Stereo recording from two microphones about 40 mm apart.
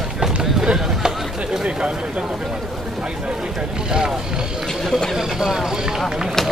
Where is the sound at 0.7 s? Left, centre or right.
Centre.